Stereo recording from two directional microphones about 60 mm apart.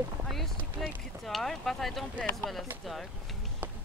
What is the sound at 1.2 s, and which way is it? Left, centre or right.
Speech, centre.